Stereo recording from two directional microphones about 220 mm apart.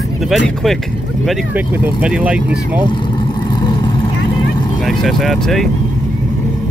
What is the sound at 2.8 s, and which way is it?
Speech, 20° left (ahead or behind).